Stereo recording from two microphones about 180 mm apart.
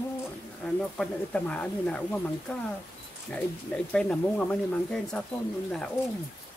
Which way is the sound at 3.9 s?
5° left (ahead or behind).